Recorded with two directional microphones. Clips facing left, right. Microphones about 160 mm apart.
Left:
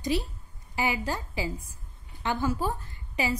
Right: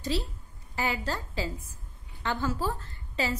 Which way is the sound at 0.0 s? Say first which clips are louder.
Left 3 dB; 15° left (ahead or behind).